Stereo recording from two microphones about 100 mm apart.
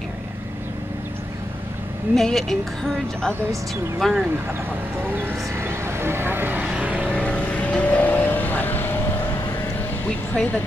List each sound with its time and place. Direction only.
2.1 s a woman's voice: 5° left (ahead or behind)
5.0 s speech: 20° right (ahead or behind)
6.8 s vehicle: 15° right (ahead or behind)
7.1 s vehicle: 10° left (ahead or behind)
10.0 s speech: 15° left (ahead or behind)